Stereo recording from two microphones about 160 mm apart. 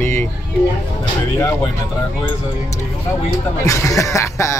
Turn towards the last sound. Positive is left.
turn(degrees=20)  # may be behind; listen again after turning